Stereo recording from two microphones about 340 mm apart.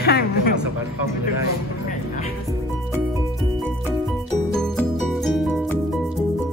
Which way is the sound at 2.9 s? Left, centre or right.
Centre.